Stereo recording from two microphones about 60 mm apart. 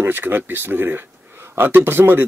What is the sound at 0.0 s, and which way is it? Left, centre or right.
Speech, right.